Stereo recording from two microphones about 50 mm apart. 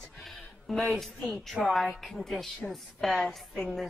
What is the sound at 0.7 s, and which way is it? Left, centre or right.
A woman's voice, centre.